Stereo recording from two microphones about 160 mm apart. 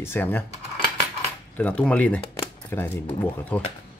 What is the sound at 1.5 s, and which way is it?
Speech, 10° left (ahead or behind).